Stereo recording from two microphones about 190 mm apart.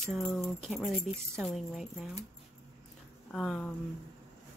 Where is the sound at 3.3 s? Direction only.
Centre (ahead or behind).